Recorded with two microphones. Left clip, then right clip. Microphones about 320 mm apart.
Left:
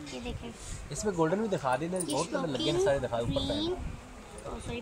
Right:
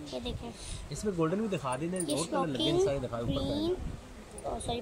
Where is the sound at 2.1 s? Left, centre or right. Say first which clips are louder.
Right 1 dB; centre.